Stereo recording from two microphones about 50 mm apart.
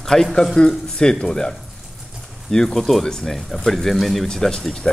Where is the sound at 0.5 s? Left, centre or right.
Centre.